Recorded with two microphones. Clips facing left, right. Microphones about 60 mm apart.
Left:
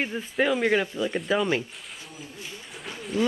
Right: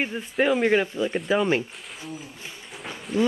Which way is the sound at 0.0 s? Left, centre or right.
Centre.